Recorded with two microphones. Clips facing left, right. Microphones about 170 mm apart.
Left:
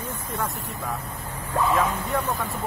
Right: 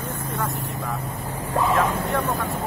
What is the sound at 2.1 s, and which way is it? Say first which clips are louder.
Speech: right 2 dB; centre (ahead or behind).